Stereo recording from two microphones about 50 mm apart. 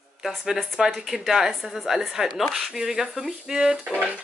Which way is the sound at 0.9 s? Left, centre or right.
Centre.